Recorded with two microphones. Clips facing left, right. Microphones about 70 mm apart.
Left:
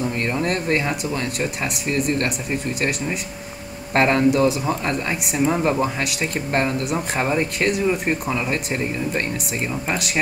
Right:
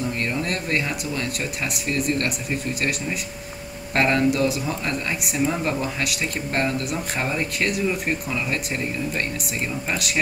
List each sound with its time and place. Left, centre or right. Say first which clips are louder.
0.2 s speech: left 3 dB; centre
3.9 s speech: left 3 dB; centre
5.4 s speech: left 4 dB; left
5.7 s speech: left 4 dB; centre